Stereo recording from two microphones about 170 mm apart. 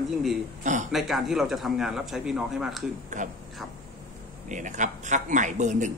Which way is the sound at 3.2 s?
45° right (ahead or behind).